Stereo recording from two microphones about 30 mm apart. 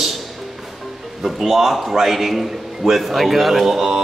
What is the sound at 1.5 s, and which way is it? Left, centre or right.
A man's voice, centre.